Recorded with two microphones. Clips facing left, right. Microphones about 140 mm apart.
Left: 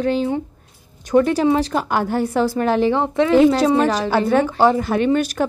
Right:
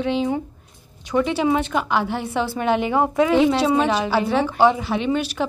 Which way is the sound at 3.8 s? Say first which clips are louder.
Left 2 dB; 40° left (ahead or behind).